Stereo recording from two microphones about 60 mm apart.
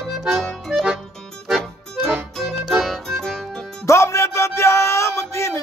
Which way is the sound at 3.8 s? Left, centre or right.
Left.